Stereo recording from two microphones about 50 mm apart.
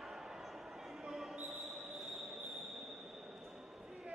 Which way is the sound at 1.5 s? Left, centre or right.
Centre.